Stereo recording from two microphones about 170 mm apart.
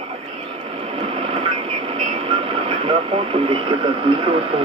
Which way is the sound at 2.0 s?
30° right (ahead or behind).